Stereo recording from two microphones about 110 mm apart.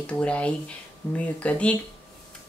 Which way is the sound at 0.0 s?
10° left (ahead or behind).